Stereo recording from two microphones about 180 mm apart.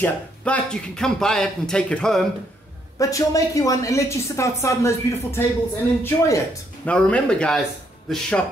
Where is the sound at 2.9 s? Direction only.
20° left (ahead or behind).